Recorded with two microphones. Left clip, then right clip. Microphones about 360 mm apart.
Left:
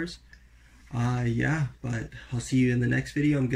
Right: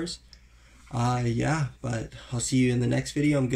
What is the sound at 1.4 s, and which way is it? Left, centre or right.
Speech, right.